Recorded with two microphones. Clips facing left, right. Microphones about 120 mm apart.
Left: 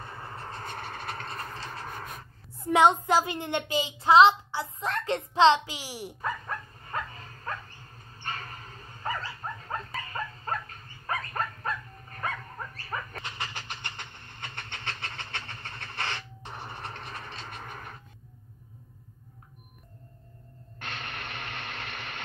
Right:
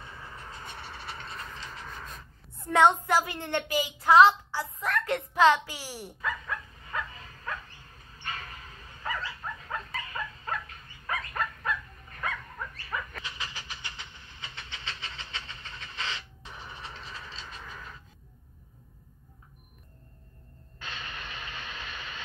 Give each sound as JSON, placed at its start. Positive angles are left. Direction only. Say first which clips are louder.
{"t": 0.0, "sound": "train", "louder": "left 4 dB", "side_deg": 40}
{"t": 2.6, "sound": "a woman's voice", "louder": "left 1 dB", "side_deg": 15}
{"t": 6.2, "sound": "dog", "louder": "even", "side_deg": 40}
{"t": 13.4, "sound": "vehicle", "louder": "left 3 dB", "side_deg": 55}
{"t": 20.8, "sound": "vehicle", "louder": "left 2 dB", "side_deg": 65}